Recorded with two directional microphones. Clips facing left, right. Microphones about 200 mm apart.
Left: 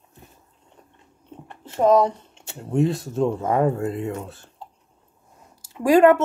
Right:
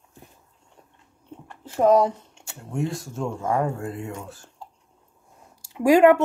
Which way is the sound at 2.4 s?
25° left (ahead or behind).